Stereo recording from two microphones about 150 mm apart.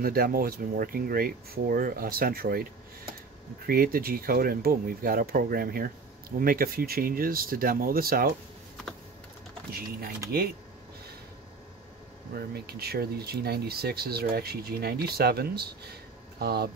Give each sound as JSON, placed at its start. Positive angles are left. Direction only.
{"t": 0.0, "sound": "speech", "side_deg": -80}
{"t": 3.6, "sound": "speech", "side_deg": -75}
{"t": 9.7, "sound": "speech", "side_deg": -90}
{"t": 12.4, "sound": "speech", "side_deg": -90}